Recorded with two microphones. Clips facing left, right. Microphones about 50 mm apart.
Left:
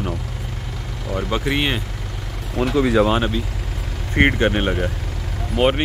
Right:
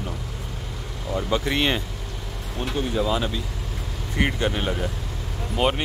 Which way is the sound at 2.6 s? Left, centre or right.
Left.